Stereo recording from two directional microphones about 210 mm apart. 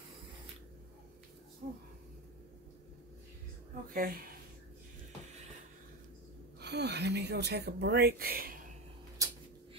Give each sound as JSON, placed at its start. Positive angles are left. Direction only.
{"t": 1.6, "sound": "speech", "side_deg": -50}
{"t": 3.9, "sound": "speech", "side_deg": -45}
{"t": 6.6, "sound": "speech", "side_deg": -55}
{"t": 9.2, "sound": "a sound", "side_deg": -15}